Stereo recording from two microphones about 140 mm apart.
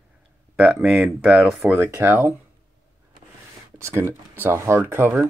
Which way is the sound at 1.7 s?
15° right (ahead or behind).